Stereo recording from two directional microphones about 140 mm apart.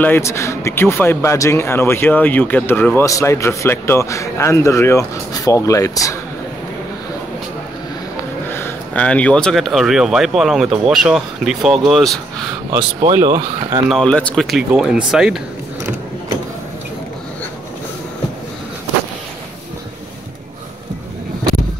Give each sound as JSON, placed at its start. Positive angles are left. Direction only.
{"t": 0.0, "sound": "a man's voice", "side_deg": 15}
{"t": 8.5, "sound": "speech", "side_deg": 15}
{"t": 13.1, "sound": "speech", "side_deg": -20}
{"t": 13.8, "sound": "speech", "side_deg": 5}